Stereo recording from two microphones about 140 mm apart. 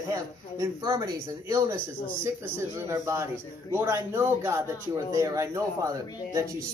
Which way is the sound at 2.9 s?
20° right (ahead or behind).